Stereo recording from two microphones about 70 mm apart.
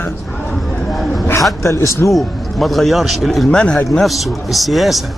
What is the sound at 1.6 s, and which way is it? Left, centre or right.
Speech, left.